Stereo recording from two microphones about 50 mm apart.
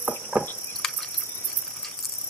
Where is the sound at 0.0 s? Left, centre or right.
Centre.